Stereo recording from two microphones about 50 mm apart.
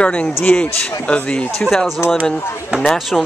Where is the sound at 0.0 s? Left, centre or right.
Left.